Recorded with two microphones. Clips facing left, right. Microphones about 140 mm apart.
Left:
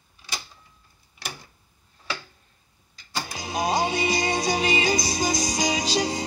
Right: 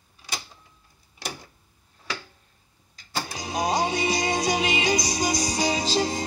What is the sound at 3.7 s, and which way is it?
Music, 10° left (ahead or behind).